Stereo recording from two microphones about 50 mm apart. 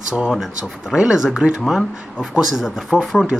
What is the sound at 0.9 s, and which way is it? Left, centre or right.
Speech, centre.